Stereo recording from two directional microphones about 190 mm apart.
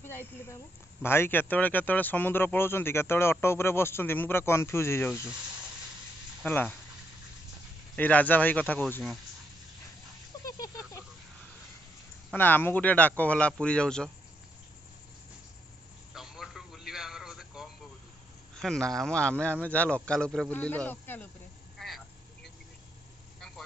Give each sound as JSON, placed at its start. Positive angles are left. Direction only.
{"t": 0.0, "sound": "a man's voice", "side_deg": 10}
{"t": 6.4, "sound": "a man's voice", "side_deg": 10}
{"t": 7.9, "sound": "a man's voice", "side_deg": 10}
{"t": 10.3, "sound": "a sound", "side_deg": 20}
{"t": 12.3, "sound": "a man's voice", "side_deg": 10}
{"t": 16.1, "sound": "a sound", "side_deg": 0}
{"t": 18.6, "sound": "speech", "side_deg": 5}
{"t": 21.7, "sound": "vehicle", "side_deg": 0}